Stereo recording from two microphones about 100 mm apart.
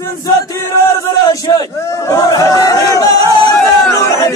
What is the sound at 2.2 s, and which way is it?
Chatter, 35° left (ahead or behind).